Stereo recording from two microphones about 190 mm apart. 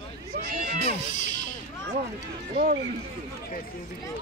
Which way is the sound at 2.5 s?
50° right (ahead or behind).